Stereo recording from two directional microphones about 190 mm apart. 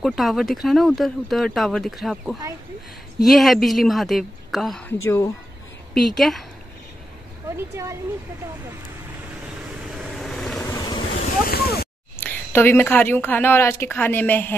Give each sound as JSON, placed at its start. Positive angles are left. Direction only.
{"t": 0.0, "sound": "speech", "side_deg": 0}
{"t": 5.0, "sound": "a woman's voice", "side_deg": 15}
{"t": 5.9, "sound": "speech", "side_deg": 0}
{"t": 7.4, "sound": "speech", "side_deg": -15}
{"t": 9.8, "sound": "vehicle", "side_deg": 0}
{"t": 10.6, "sound": "boat", "side_deg": 20}
{"t": 11.4, "sound": "a sound", "side_deg": 55}
{"t": 12.2, "sound": "a woman's voice", "side_deg": 10}